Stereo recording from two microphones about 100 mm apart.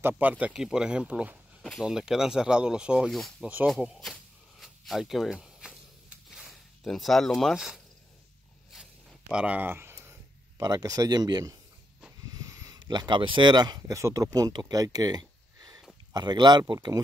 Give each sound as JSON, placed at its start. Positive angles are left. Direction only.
{"t": 0.2, "sound": "speech", "side_deg": -15}
{"t": 1.6, "sound": "speech", "side_deg": 0}
{"t": 3.1, "sound": "speech", "side_deg": 0}
{"t": 3.6, "sound": "a sound", "side_deg": 0}
{"t": 9.3, "sound": "speech", "side_deg": -10}
{"t": 10.6, "sound": "speech", "side_deg": -40}
{"t": 13.9, "sound": "speech", "side_deg": -30}